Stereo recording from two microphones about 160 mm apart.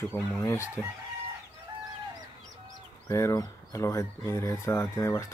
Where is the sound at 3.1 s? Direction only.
20° left (ahead or behind).